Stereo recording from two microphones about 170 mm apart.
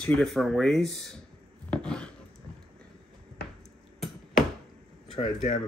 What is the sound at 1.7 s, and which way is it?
Writing, 5° left (ahead or behind).